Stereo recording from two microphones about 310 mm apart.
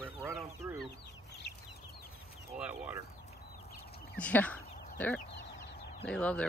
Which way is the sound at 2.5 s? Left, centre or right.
Centre.